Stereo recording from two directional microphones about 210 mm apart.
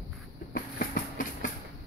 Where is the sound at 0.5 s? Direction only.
45° left (ahead or behind).